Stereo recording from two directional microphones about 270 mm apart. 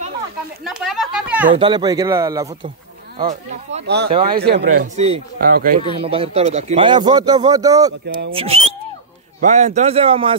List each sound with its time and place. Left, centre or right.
0.7 s speech: centre
1.5 s a man's voice: centre
3.2 s speech: right
3.8 s speech: right
4.9 s speech: right
6.0 s a man's voice: right